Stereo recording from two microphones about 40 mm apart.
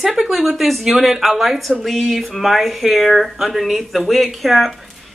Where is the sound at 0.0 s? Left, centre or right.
Centre.